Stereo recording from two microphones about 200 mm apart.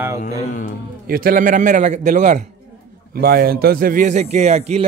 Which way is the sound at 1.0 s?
45° right (ahead or behind).